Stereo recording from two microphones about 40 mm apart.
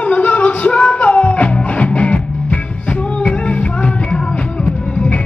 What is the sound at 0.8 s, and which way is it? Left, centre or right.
Music, left.